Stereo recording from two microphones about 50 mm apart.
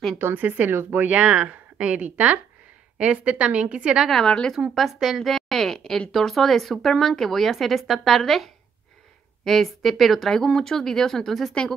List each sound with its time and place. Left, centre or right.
0.4 s speech: right
0.7 s speech: right
1.1 s speech: right
4.1 s speech: centre
4.7 s a woman's voice: centre
5.2 s speech: centre